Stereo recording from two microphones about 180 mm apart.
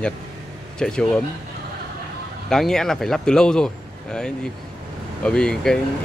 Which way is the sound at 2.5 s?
5° left (ahead or behind).